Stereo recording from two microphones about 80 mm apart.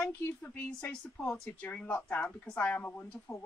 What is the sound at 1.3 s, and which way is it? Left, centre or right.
Speech, centre.